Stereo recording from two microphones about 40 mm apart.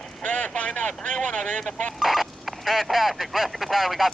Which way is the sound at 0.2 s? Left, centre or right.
Left.